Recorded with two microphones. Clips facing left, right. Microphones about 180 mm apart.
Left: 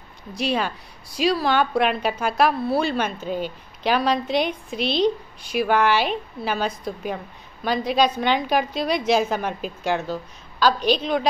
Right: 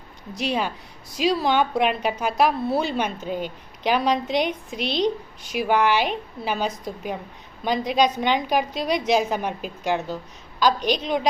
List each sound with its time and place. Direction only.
0.4 s a woman's voice: 15° right (ahead or behind)